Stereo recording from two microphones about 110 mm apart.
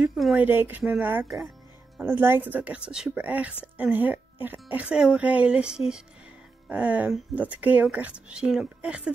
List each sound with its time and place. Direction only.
0.1 s a sound: centre (ahead or behind)
0.4 s a woman's voice: 20° right (ahead or behind)
1.2 s speech: centre (ahead or behind)
2.0 s a woman's voice: 20° right (ahead or behind)